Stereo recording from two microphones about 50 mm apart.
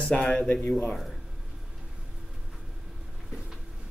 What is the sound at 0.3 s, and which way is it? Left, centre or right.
Speech, left.